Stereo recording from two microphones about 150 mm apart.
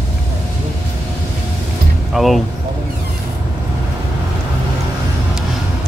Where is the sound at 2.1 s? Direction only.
Centre (ahead or behind).